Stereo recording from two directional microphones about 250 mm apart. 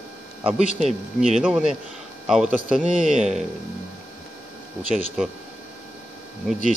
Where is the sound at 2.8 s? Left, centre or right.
Right.